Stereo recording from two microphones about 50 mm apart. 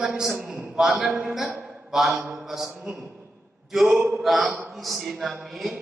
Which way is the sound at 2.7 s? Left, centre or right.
Centre.